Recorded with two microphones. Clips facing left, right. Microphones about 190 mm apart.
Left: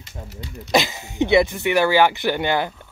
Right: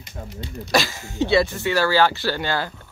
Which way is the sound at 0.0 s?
20° right (ahead or behind).